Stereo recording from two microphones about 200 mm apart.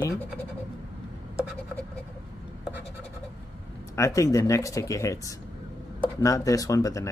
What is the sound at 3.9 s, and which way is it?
Speech, 15° left (ahead or behind).